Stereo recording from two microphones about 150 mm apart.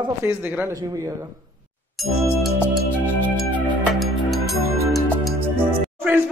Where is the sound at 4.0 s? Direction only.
Centre (ahead or behind).